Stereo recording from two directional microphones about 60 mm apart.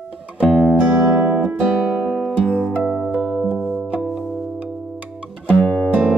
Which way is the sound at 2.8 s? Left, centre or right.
Centre.